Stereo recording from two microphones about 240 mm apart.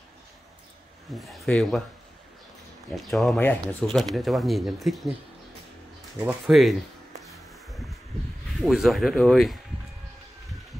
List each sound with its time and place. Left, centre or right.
1.1 s speech: centre
2.9 s speech: centre
6.1 s a sound: centre
8.5 s speech: centre